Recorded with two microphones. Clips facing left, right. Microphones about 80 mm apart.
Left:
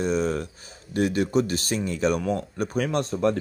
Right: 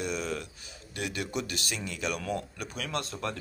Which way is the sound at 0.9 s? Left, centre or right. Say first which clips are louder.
Left 12 dB; left.